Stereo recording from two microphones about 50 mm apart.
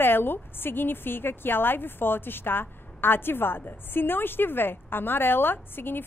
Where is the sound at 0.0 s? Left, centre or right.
Left.